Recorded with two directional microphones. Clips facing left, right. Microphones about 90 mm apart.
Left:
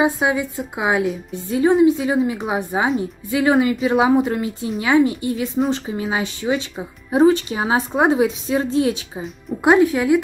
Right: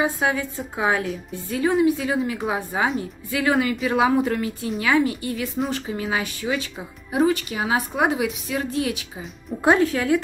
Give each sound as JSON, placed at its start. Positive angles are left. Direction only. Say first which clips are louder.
{"t": 0.0, "sound": "a woman's voice", "louder": "left 4 dB", "side_deg": 15}
{"t": 9.6, "sound": "a woman's voice", "louder": "left 4 dB", "side_deg": 15}